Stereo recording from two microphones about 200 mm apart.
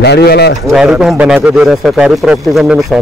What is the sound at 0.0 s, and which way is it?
Speech, 55° left (ahead or behind).